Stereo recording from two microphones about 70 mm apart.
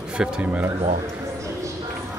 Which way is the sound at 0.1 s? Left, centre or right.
Centre.